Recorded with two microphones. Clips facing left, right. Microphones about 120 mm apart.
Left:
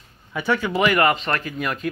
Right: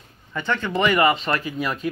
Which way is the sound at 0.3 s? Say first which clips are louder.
Left 3 dB; 10° left (ahead or behind).